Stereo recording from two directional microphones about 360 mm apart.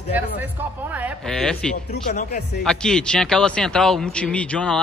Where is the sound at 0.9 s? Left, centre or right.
Centre.